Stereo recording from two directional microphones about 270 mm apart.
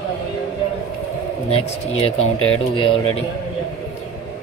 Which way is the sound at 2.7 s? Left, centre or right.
Centre.